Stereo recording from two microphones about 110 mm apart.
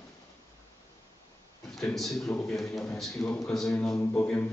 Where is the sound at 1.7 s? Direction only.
Centre (ahead or behind).